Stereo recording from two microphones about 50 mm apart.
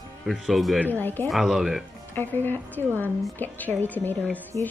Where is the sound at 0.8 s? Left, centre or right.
Left.